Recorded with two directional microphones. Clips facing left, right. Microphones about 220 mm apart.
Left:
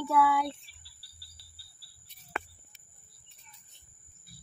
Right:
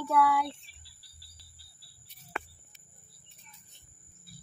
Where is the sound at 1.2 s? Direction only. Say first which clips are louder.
Right 2 dB; 15° right (ahead or behind).